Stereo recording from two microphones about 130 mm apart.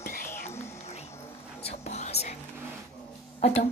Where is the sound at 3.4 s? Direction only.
60° left (ahead or behind).